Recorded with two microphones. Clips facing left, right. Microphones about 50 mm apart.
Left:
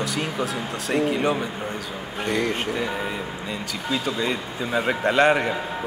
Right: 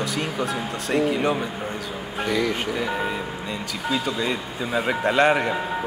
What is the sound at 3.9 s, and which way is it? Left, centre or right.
A man's voice, centre.